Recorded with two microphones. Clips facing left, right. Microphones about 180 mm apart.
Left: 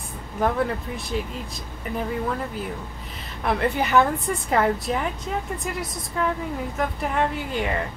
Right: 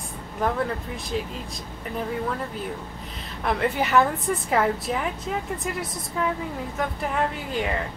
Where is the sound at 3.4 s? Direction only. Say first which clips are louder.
Left 1 dB; centre (ahead or behind).